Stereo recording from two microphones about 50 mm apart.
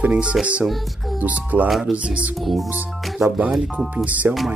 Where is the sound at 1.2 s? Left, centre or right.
Right.